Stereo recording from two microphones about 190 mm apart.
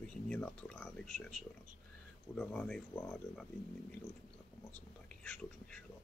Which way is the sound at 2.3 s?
5° left (ahead or behind).